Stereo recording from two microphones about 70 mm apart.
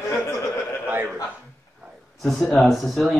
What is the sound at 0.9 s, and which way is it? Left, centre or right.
Speech, right.